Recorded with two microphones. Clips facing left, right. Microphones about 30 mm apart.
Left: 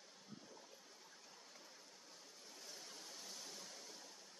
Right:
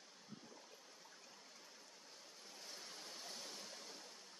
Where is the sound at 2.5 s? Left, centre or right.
Right.